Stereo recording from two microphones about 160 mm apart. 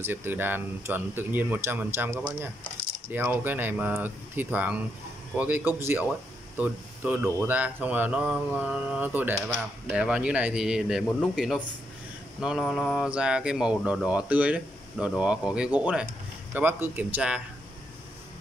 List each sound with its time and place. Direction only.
0.0 s speech: 15° right (ahead or behind)